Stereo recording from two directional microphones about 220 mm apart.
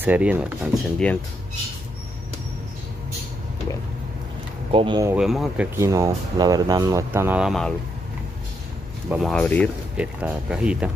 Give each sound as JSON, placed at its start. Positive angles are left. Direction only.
{"t": 0.0, "sound": "speech", "side_deg": -10}
{"t": 4.7, "sound": "speech", "side_deg": -20}
{"t": 5.1, "sound": "speech", "side_deg": 0}
{"t": 5.8, "sound": "speech", "side_deg": -15}
{"t": 9.1, "sound": "speech", "side_deg": 0}
{"t": 9.9, "sound": "speech", "side_deg": -5}